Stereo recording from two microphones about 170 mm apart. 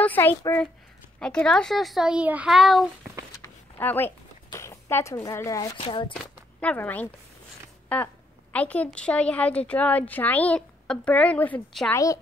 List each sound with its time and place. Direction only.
0.0 s a sound: 10° left (ahead or behind)
1.2 s a child's voice: 5° left (ahead or behind)
3.4 s a sound: 10° left (ahead or behind)
4.5 s speech: 15° left (ahead or behind)
5.8 s speech: 30° left (ahead or behind)
6.6 s a woman's voice: 10° left (ahead or behind)
8.5 s a woman's voice: 10° left (ahead or behind)
11.9 s speech: 20° left (ahead or behind)